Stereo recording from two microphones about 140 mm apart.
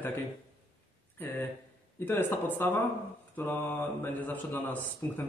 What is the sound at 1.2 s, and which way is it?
Speech, 15° left (ahead or behind).